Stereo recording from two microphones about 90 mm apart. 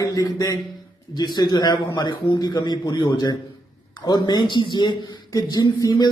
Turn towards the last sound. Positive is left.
turn(degrees=45)  # may be behind; listen again after turning